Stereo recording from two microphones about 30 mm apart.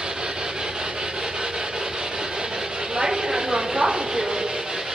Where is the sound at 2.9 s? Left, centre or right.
Right.